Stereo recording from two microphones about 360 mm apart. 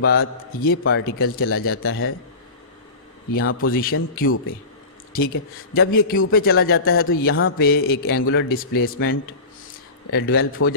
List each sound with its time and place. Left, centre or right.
0.0 s a man's voice: left
3.6 s a man's voice: left
5.9 s a man's voice: left
10.1 s a man's voice: left